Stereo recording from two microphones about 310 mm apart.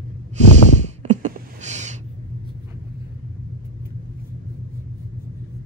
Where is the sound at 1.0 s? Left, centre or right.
Right.